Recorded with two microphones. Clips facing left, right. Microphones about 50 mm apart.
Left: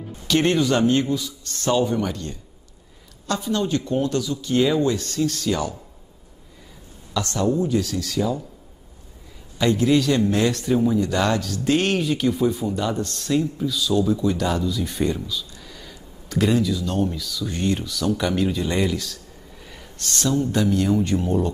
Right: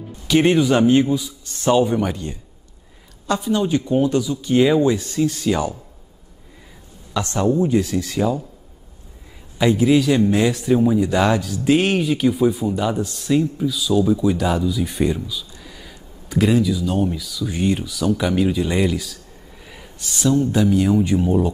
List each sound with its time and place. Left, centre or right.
0.3 s speech: centre
7.2 s speech: right
9.6 s a man's voice: centre